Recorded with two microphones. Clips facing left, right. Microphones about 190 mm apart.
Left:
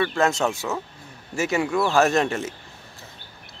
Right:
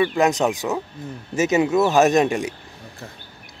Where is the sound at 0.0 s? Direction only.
15° right (ahead or behind).